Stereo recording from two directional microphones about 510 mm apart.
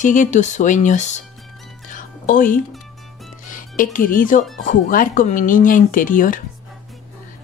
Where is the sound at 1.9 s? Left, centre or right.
Centre.